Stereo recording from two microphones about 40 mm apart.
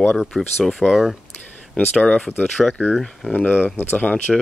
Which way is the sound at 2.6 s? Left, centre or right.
Centre.